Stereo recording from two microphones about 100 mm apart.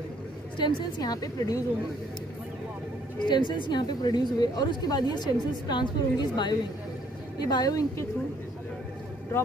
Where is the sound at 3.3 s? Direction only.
50° left (ahead or behind).